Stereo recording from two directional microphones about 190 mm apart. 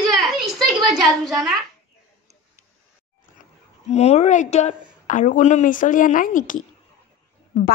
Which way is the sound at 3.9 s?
35° left (ahead or behind).